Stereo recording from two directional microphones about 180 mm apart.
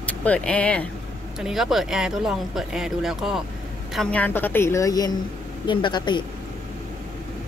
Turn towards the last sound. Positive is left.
turn(degrees=25)  # may be behind; listen again after turning